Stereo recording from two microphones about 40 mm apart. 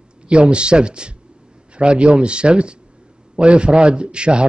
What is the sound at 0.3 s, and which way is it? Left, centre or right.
Speech, right.